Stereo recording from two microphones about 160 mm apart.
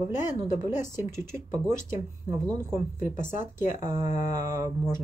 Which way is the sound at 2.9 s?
55° left (ahead or behind).